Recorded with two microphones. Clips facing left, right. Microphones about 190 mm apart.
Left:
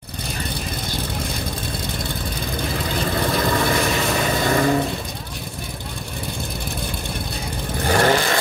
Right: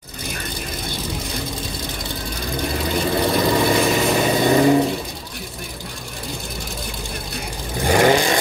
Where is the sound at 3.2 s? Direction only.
15° right (ahead or behind).